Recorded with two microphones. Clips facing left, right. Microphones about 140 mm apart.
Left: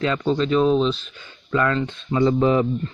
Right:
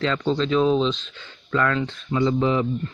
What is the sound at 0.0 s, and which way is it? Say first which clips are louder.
Speech: left 2 dB; 10° left (ahead or behind).